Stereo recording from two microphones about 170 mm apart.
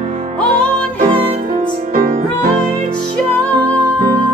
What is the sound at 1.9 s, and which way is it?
Music, 60° right (ahead or behind).